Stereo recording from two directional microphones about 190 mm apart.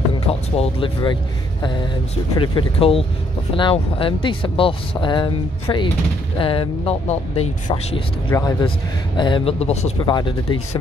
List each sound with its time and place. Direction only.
0.3 s speech: 30° left (ahead or behind)
8.3 s speech: 20° left (ahead or behind)